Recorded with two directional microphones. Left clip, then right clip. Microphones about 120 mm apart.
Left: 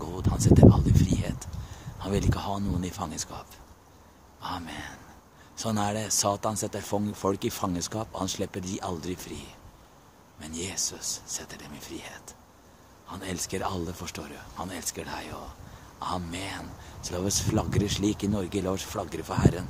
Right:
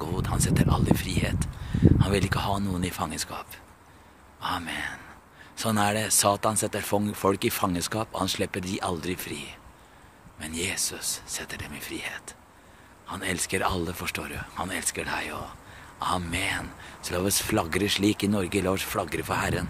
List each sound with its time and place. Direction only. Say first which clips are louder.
0.0 s speech: right 2 dB; 15° right (ahead or behind)